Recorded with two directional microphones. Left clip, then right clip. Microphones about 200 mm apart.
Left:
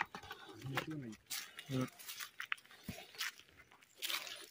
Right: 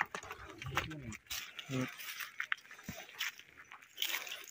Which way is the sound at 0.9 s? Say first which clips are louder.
Right 2 dB; 5° right (ahead or behind).